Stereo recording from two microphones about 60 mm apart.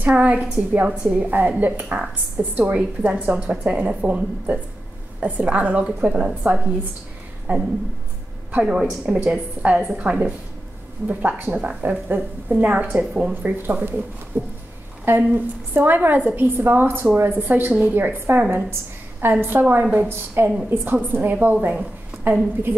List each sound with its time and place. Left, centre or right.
0.0 s a woman's voice: right
1.2 s a woman's voice: right
2.4 s a woman's voice: right
2.7 s a woman's voice: centre
6.4 s a woman's voice: right
8.6 s a woman's voice: centre; by 19.4 s right
19.7 s a woman's voice: right